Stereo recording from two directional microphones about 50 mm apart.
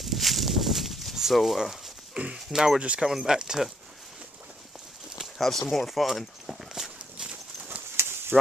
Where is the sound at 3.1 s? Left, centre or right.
Centre.